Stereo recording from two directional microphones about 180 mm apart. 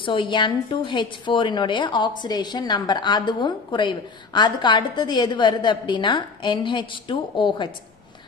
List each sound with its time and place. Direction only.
0.0 s a woman's voice: 25° left (ahead or behind)